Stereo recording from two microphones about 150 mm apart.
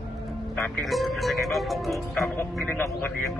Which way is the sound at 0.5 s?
10° left (ahead or behind).